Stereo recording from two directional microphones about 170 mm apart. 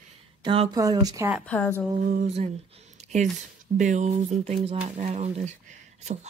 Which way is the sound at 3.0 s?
40° right (ahead or behind).